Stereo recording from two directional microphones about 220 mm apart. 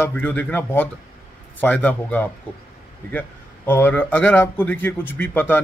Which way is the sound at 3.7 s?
10° left (ahead or behind).